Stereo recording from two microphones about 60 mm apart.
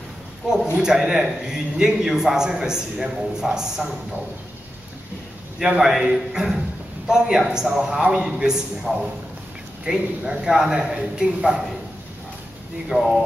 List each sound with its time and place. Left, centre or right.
0.7 s a man's voice: centre
5.6 s a man's voice: centre
9.8 s a man's voice: centre
12.9 s a man's voice: centre